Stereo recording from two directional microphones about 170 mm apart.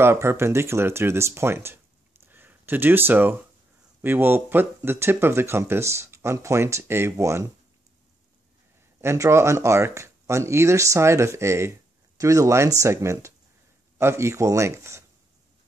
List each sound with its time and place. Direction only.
0.0 s speech: 15° right (ahead or behind)
9.0 s speech: 15° right (ahead or behind)